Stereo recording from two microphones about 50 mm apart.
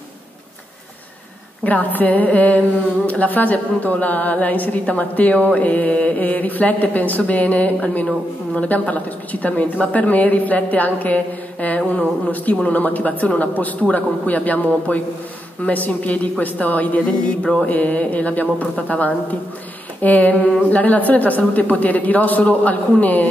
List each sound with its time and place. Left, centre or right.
1.6 s a woman's voice: left